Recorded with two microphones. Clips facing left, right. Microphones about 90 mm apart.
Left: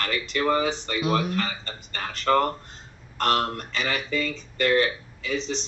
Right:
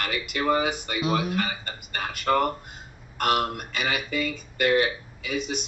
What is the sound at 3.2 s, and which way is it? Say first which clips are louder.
Speech: even; 15° right (ahead or behind).